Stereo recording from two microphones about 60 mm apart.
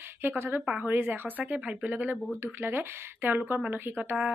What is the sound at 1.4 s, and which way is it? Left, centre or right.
Speech, centre.